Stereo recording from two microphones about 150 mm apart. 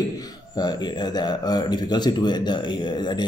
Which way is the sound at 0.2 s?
25° left (ahead or behind).